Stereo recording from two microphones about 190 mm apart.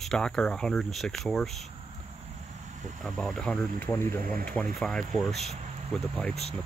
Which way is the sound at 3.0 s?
Centre (ahead or behind).